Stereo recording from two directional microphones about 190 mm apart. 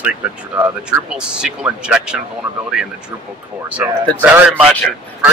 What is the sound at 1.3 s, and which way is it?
Speech, 5° right (ahead or behind).